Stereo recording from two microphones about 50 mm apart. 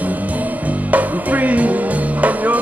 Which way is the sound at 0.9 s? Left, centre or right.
Right.